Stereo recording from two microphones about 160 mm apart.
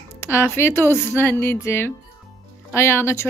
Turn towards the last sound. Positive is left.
turn(degrees=15)  # may be behind; listen again after turning